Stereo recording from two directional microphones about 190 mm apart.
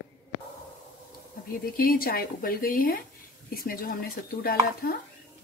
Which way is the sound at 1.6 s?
50° left (ahead or behind).